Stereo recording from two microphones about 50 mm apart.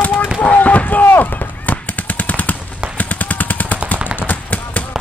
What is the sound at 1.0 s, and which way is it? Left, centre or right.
Machine gun, left.